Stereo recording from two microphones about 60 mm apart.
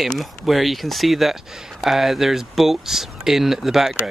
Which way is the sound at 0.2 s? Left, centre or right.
Centre.